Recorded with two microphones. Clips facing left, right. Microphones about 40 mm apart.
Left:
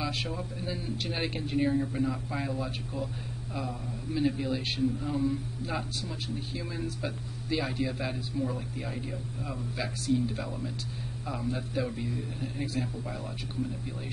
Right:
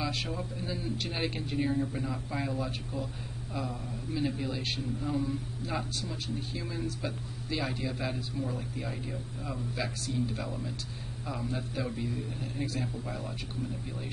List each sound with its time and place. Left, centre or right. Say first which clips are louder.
0.0 s a man's voice: left 1 dB; centre